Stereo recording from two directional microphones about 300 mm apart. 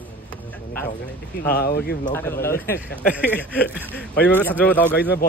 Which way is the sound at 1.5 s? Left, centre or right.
Left.